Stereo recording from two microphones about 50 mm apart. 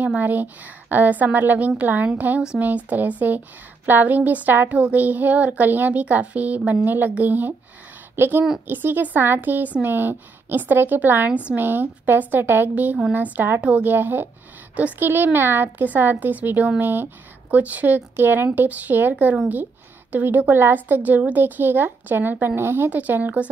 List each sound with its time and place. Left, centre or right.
0.0 s speech: right
8.2 s speech: right
12.7 s speech: right
13.6 s speech: right
13.8 s speech: right
16.9 s speech: right
17.6 s speech: right
18.1 s speech: right
20.5 s speech: right
22.8 s speech: right